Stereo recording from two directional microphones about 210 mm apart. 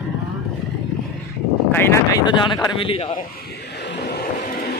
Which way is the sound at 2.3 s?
20° left (ahead or behind).